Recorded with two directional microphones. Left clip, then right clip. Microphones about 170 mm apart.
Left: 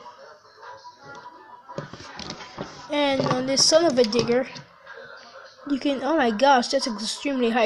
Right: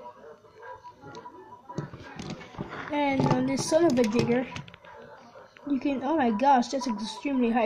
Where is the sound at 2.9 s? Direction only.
10° left (ahead or behind).